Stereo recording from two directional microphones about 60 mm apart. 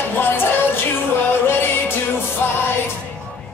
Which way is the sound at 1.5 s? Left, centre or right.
Left.